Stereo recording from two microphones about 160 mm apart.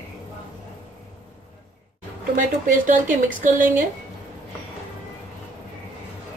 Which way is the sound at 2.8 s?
55° right (ahead or behind).